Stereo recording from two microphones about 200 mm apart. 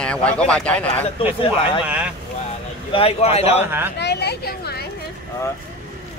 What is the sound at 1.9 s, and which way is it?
Speech, 5° right (ahead or behind).